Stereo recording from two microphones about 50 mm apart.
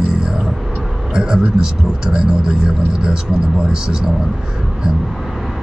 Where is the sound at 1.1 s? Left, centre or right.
Centre.